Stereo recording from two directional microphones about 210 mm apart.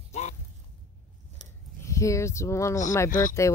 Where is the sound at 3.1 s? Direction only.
40° left (ahead or behind).